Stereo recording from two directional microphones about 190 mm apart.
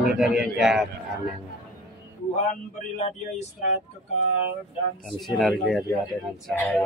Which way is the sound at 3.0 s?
35° left (ahead or behind).